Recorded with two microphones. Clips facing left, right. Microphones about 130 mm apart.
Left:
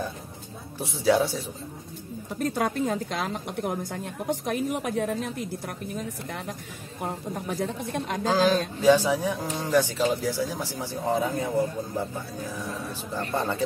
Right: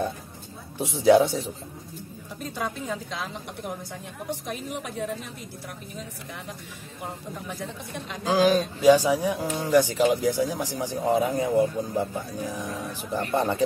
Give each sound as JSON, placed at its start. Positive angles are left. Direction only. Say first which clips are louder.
{"t": 0.7, "sound": "speech", "louder": "right 5 dB", "side_deg": -20}
{"t": 2.3, "sound": "a woman's voice", "louder": "left 6 dB", "side_deg": 55}
{"t": 8.3, "sound": "speech", "louder": "right 2 dB", "side_deg": -15}